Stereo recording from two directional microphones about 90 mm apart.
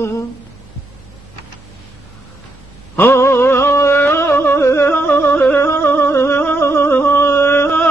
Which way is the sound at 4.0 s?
30° left (ahead or behind).